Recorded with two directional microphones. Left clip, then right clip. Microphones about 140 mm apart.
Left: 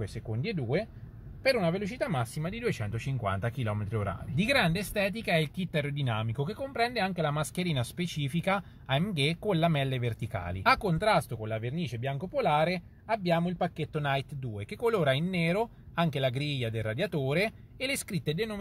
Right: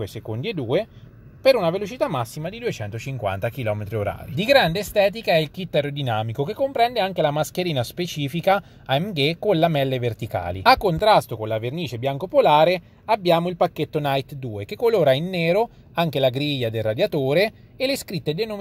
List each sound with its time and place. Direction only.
0.3 s speech: 35° right (ahead or behind)
2.7 s speech: 15° right (ahead or behind); by 13.8 s 35° right (ahead or behind)
13.9 s speech: 25° right (ahead or behind)